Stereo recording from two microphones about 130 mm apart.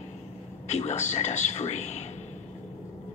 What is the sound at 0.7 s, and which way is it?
A man's voice, 60° left (ahead or behind).